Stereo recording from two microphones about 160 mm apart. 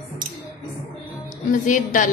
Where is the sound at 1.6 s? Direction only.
55° left (ahead or behind).